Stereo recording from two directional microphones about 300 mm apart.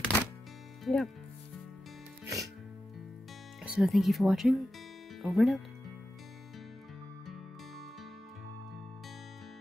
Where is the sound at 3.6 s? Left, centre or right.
Centre.